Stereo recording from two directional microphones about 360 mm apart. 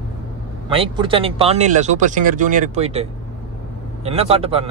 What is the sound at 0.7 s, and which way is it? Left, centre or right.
Speech, centre.